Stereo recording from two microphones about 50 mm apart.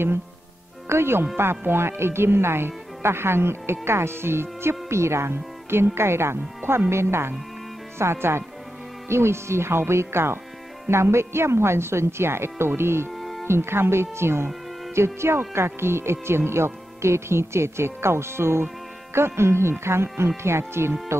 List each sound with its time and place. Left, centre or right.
0.8 s speech: right